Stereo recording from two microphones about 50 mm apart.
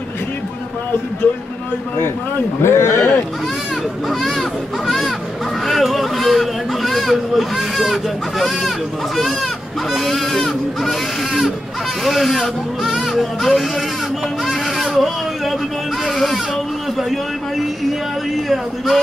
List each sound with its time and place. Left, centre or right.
1.2 s speech: left
2.6 s speech: left
4.2 s speech: centre